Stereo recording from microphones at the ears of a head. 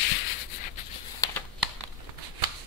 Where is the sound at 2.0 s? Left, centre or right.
Right.